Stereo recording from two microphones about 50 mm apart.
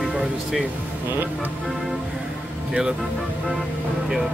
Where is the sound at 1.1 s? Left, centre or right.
Right.